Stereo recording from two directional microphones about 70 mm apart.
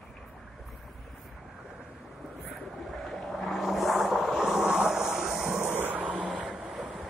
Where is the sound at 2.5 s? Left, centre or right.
Centre.